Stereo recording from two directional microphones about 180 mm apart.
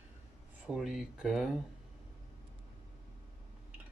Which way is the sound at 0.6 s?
5° right (ahead or behind).